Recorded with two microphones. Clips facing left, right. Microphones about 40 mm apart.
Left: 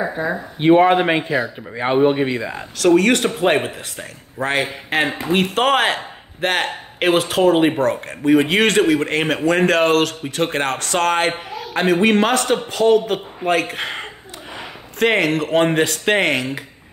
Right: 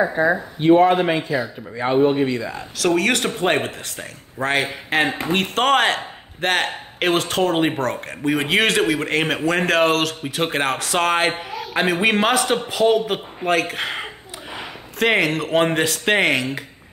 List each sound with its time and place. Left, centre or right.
0.1 s speech: right
0.6 s speech: left
2.8 s speech: centre